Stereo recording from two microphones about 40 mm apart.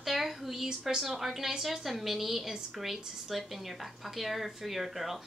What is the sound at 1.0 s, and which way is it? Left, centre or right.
A woman's voice, centre.